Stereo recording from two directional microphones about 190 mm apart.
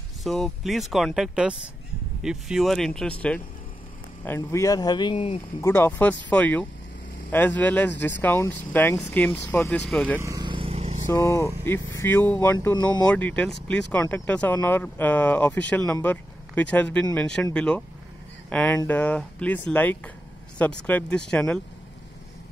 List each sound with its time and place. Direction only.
0.2 s speech: centre (ahead or behind); by 5.4 s 30° left (ahead or behind)
5.6 s speech: 10° left (ahead or behind)
10.2 s vehicle: 20° right (ahead or behind)
11.1 s speech: 15° left (ahead or behind)
12.5 s speech: 20° left (ahead or behind)
13.0 s speech: 5° left (ahead or behind)